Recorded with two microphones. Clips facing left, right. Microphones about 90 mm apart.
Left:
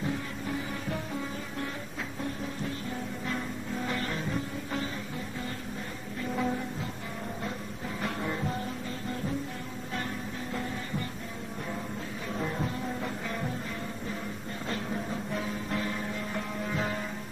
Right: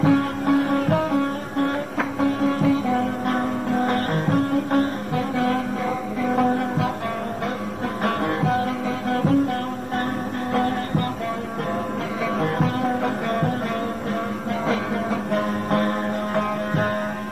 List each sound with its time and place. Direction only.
0.0 s music: 80° right
6.2 s music: 65° right (ahead or behind)
8.0 s music: 70° right (ahead or behind); by 9.4 s 90° right
10.5 s music: 75° right (ahead or behind)
12.4 s music: 75° right (ahead or behind)
14.7 s music: 75° right (ahead or behind); by 16.9 s 55° right (ahead or behind)